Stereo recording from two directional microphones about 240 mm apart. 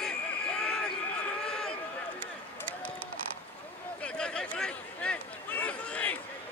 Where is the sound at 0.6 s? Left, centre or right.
Centre.